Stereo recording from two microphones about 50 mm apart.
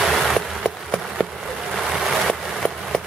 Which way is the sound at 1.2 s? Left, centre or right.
Centre.